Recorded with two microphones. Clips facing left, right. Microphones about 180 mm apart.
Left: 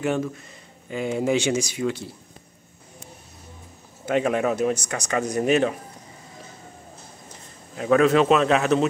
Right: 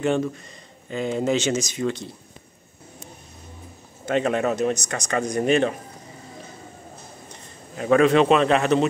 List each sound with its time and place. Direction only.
0.0 s a man's voice: 5° left (ahead or behind)
4.0 s speech: 10° left (ahead or behind)
7.7 s a man's voice: centre (ahead or behind)